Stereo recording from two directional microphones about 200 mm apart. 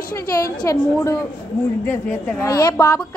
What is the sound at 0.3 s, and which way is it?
A woman's voice, 15° left (ahead or behind).